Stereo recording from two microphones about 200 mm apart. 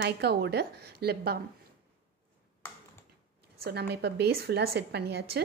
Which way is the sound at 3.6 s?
55° right (ahead or behind).